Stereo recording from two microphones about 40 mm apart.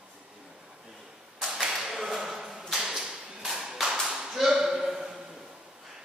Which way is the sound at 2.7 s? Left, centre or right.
Centre.